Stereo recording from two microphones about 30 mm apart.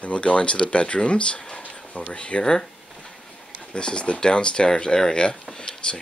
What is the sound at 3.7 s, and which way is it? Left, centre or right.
Speech, left.